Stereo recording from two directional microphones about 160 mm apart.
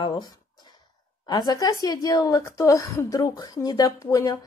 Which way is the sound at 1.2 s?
25° left (ahead or behind).